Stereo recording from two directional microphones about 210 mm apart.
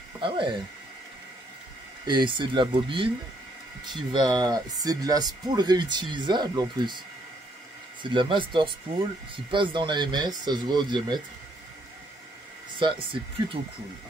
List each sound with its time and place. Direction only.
0.2 s speech: 25° right (ahead or behind)
2.0 s speech: 20° right (ahead or behind)
8.0 s speech: 25° right (ahead or behind)
12.7 s speech: 25° right (ahead or behind)